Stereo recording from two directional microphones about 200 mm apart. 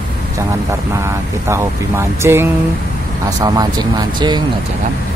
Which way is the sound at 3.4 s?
20° right (ahead or behind).